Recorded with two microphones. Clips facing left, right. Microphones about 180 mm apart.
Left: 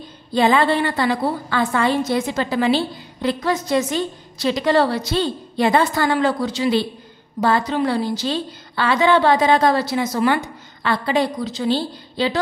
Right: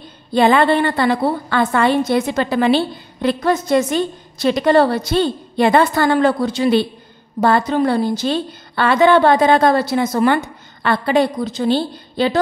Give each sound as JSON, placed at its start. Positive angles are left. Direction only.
{"t": 0.3, "sound": "a woman's voice", "side_deg": -60}